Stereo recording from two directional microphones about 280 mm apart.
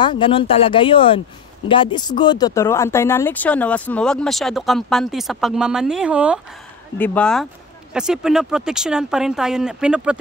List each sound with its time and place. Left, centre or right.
0.0 s speech: centre